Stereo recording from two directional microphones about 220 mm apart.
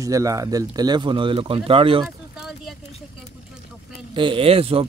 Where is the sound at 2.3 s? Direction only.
Centre (ahead or behind).